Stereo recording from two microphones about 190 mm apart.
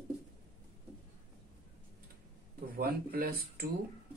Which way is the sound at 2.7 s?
50° right (ahead or behind).